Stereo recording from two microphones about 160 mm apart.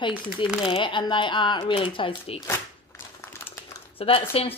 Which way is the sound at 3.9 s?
35° left (ahead or behind).